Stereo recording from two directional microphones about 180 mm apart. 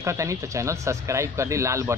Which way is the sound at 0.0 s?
15° right (ahead or behind).